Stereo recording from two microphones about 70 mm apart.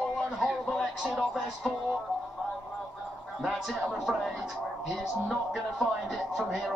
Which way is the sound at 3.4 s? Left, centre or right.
Centre.